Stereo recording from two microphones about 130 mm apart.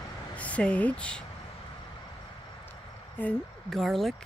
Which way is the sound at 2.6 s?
15° left (ahead or behind).